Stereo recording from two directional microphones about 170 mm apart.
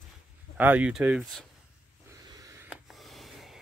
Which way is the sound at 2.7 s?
Centre (ahead or behind).